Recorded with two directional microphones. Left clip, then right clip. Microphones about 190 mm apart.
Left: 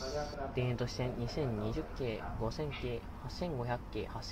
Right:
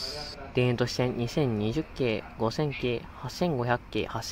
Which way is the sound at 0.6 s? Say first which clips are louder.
Right 13 dB; 65° right (ahead or behind).